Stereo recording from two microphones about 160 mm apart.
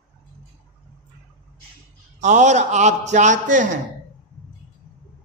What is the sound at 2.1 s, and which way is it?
A man's voice, 50° right (ahead or behind).